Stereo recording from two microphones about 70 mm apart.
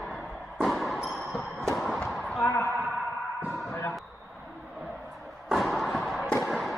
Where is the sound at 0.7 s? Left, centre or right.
Centre.